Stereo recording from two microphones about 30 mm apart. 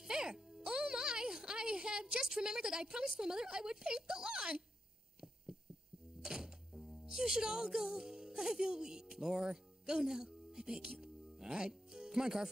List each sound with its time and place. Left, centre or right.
0.0 s music: centre
2.1 s speech: right
6.2 s music: right
6.7 s a sound: centre
7.1 s speech: centre
11.0 s music: right